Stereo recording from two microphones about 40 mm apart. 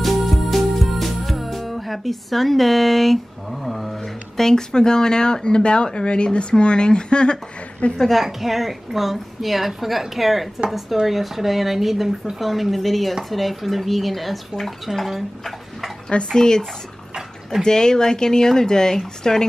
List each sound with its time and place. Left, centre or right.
0.0 s music: centre
3.6 s a woman's voice: centre
4.4 s a woman's voice: centre; by 8.0 s left
8.2 s a woman's voice: centre
16.3 s speech: centre